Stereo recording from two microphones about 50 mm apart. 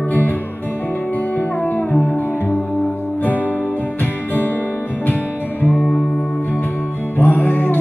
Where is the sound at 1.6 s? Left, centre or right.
Left.